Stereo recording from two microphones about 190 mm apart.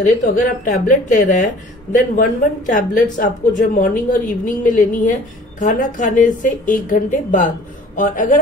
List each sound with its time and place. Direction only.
0.0 s speech: 45° left (ahead or behind)